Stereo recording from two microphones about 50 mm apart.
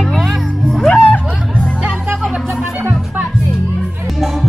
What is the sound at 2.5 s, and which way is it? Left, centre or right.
Music, right.